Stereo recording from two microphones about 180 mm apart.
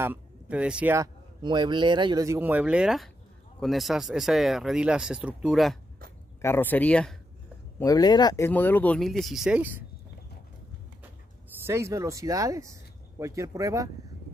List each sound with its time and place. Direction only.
0.0 s speech: 10° right (ahead or behind)
6.4 s speech: 10° left (ahead or behind)
7.8 s speech: 20° left (ahead or behind)
8.5 s speech: 10° left (ahead or behind)
11.6 s speech: 15° right (ahead or behind)